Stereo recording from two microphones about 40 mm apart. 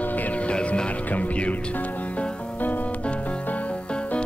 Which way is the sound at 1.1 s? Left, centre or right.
Left.